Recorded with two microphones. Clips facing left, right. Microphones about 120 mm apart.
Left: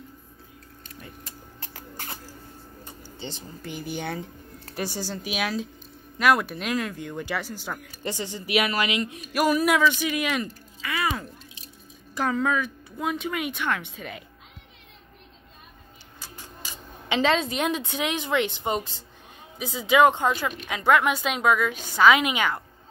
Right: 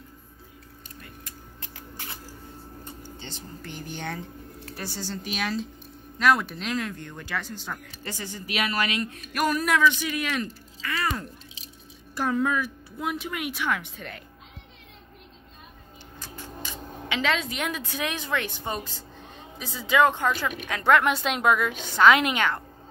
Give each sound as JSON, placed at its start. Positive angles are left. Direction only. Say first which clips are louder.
{"t": 1.0, "sound": "a sound", "louder": "left 1 dB", "side_deg": 30}
{"t": 3.2, "sound": "speech", "louder": "left 2 dB", "side_deg": 15}
{"t": 8.0, "sound": "speech", "louder": "left 5 dB", "side_deg": 20}
{"t": 12.2, "sound": "speech", "louder": "left 1 dB", "side_deg": 0}
{"t": 17.1, "sound": "a woman's voice", "louder": "left 4 dB", "side_deg": 30}
{"t": 20.6, "sound": "speech", "louder": "even", "side_deg": 5}